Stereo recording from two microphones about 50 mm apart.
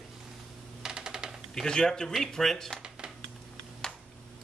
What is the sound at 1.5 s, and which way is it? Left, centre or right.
Speech, centre.